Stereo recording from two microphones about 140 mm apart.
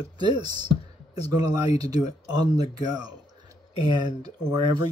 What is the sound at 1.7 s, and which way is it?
Speech, 30° right (ahead or behind).